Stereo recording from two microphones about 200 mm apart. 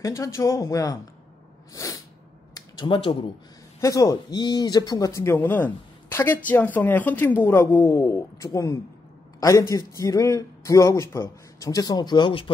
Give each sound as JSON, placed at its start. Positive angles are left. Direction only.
{"t": 0.0, "sound": "a man's voice", "side_deg": 15}